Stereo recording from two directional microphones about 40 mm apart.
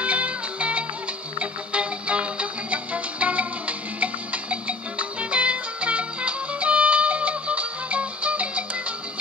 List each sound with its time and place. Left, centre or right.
0.0 s music: right